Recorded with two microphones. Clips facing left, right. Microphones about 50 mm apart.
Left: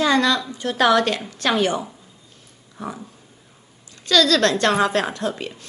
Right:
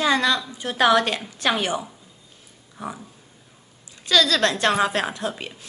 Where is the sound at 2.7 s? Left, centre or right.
Centre.